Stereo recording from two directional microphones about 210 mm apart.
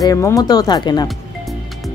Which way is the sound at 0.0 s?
15° left (ahead or behind).